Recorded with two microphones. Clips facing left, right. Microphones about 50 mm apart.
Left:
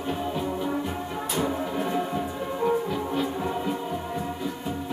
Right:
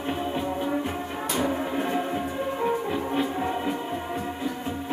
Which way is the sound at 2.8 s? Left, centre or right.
Right.